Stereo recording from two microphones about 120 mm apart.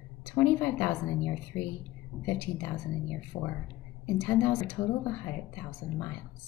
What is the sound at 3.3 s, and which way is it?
Speech, 30° left (ahead or behind).